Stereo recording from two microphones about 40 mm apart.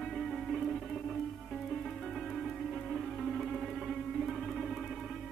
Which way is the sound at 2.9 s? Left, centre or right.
Centre.